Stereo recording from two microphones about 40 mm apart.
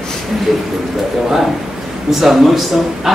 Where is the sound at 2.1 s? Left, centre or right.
Centre.